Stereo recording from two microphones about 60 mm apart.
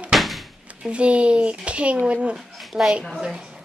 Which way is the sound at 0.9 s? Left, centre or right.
Centre.